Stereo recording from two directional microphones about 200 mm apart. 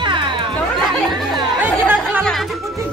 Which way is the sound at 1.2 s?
10° right (ahead or behind).